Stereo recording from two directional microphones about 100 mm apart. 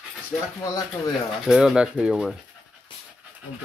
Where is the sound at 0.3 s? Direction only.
5° left (ahead or behind).